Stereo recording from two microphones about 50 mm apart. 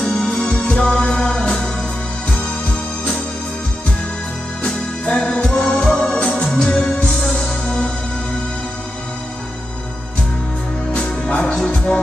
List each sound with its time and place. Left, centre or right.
0.0 s music: centre
4.6 s music: centre
10.9 s music: centre